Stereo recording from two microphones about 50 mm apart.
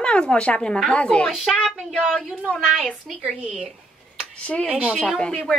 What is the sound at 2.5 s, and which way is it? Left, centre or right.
Speech, left.